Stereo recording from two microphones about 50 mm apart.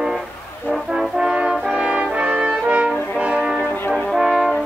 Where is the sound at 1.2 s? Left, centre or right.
Centre.